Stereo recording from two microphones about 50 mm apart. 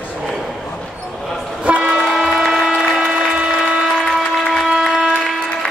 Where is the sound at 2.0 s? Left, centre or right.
Centre.